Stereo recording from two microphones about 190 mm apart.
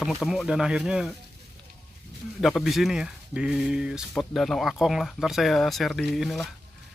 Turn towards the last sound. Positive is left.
turn(degrees=0)  # may be behind; listen again after turning